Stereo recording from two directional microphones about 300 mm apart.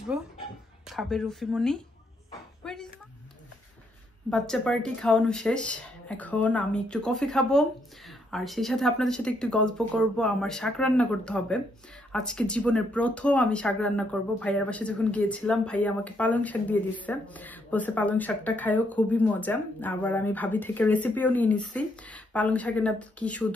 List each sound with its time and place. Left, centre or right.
0.8 s speech: centre
2.6 s a sound: centre
4.3 s speech: centre